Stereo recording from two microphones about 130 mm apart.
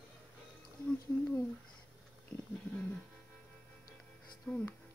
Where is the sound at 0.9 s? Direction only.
15° left (ahead or behind).